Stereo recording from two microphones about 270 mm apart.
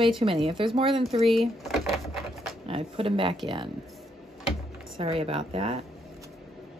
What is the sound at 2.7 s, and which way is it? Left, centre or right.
Speech, centre.